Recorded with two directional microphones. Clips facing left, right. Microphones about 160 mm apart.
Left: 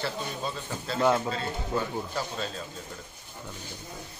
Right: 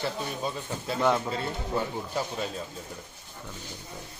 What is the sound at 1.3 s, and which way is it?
A man's voice, 20° right (ahead or behind).